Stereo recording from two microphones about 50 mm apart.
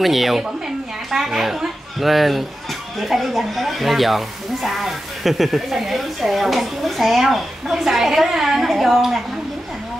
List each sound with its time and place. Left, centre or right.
0.0 s a woman's voice: centre